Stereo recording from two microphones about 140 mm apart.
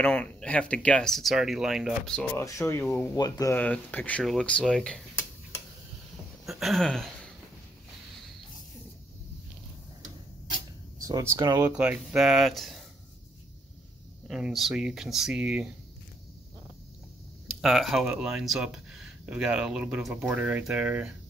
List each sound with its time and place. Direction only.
0.0 s speech: 10° left (ahead or behind)
2.3 s speech: 20° left (ahead or behind)
3.2 s speech: 25° left (ahead or behind)
3.5 s speech: 10° left (ahead or behind)
6.4 s a sound: centre (ahead or behind)
11.0 s speech: 25° right (ahead or behind)
11.7 s speech: 10° right (ahead or behind)
14.2 s speech: centre (ahead or behind)
17.5 s speech: centre (ahead or behind)